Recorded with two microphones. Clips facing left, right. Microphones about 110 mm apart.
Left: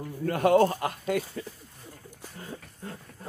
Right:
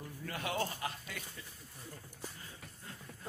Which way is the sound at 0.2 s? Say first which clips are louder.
Left 17 dB; 50° left (ahead or behind).